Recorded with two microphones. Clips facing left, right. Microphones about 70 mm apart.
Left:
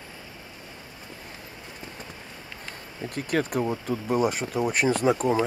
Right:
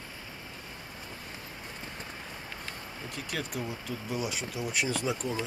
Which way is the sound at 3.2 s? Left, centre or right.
Left.